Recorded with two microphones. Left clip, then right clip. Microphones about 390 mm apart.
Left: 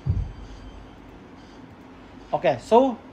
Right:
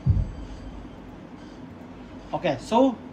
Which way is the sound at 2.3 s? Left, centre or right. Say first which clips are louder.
Left 4 dB; centre.